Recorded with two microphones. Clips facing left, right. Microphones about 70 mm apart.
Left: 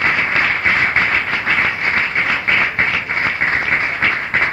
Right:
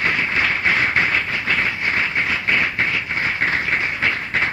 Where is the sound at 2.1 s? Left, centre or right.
Left.